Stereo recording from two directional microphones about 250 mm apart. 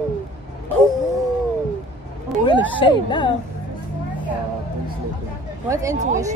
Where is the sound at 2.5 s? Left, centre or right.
Centre.